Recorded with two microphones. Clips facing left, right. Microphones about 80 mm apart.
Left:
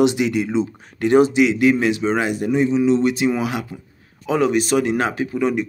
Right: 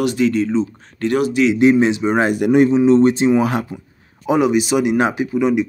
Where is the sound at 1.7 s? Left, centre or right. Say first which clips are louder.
Right 4 dB; right.